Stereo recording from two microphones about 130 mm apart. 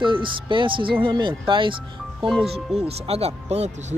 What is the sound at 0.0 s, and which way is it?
Speech, 40° right (ahead or behind).